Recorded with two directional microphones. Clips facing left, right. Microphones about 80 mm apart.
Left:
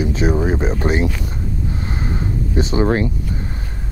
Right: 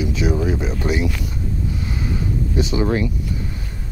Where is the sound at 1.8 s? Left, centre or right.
Left.